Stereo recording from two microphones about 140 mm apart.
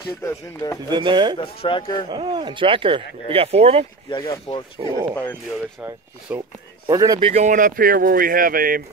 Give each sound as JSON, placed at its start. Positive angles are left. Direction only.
{"t": 0.2, "sound": "speech", "side_deg": 20}
{"t": 0.8, "sound": "speech", "side_deg": -35}
{"t": 1.4, "sound": "speech", "side_deg": 40}
{"t": 2.0, "sound": "speech", "side_deg": -35}
{"t": 4.7, "sound": "speech", "side_deg": -35}
{"t": 5.1, "sound": "speech", "side_deg": 15}
{"t": 5.5, "sound": "speech", "side_deg": -10}
{"t": 6.9, "sound": "speech", "side_deg": -25}
{"t": 7.2, "sound": "speech", "side_deg": -40}
{"t": 7.4, "sound": "speech", "side_deg": -70}